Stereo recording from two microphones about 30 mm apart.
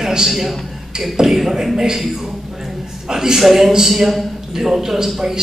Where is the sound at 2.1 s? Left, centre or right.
Centre.